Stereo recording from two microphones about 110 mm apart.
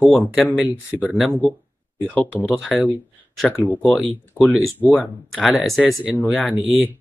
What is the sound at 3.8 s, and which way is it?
Speech, 5° left (ahead or behind).